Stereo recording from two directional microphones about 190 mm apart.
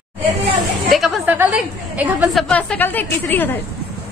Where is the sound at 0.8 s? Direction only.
Centre (ahead or behind).